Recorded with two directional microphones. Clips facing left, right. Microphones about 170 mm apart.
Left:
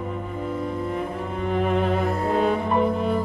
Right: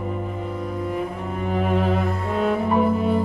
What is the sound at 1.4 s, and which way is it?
Music, centre (ahead or behind).